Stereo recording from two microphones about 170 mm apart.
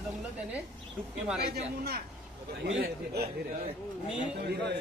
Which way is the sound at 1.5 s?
70° right (ahead or behind).